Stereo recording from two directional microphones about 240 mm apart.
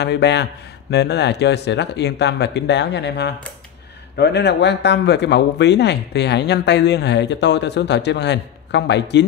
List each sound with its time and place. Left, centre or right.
0.0 s speech: left